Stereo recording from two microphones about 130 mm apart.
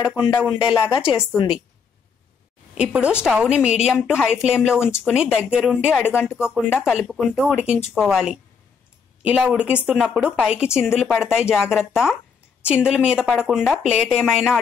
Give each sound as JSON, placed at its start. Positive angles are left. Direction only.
{"t": 0.0, "sound": "speech", "side_deg": 35}
{"t": 0.8, "sound": "speech", "side_deg": -10}
{"t": 1.3, "sound": "speech", "side_deg": 35}
{"t": 2.7, "sound": "a woman's voice", "side_deg": -10}